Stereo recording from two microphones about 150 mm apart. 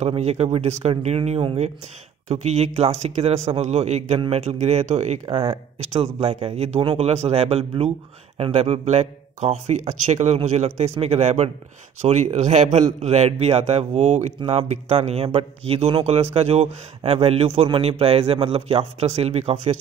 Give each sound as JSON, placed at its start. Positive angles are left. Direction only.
{"t": 0.0, "sound": "a man's voice", "side_deg": -45}
{"t": 6.2, "sound": "a man's voice", "side_deg": -40}